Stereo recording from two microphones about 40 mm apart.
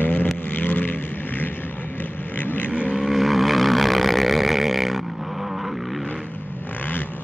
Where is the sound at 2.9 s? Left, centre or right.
Centre.